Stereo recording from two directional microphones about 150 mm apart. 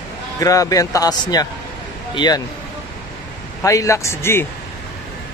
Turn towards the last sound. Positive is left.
turn(degrees=15)  # may be behind; listen again after turning